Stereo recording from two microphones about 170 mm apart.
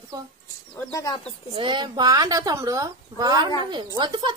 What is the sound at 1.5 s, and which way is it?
Speech, 30° right (ahead or behind).